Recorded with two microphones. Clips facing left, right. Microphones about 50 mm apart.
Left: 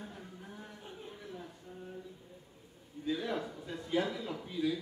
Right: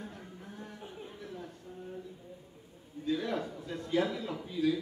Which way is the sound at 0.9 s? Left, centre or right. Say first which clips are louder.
Even; centre.